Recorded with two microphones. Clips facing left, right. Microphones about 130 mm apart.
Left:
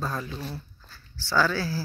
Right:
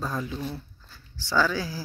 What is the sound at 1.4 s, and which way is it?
Speech, 15° right (ahead or behind).